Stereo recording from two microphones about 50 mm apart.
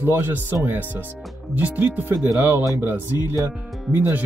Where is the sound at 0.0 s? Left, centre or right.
Right.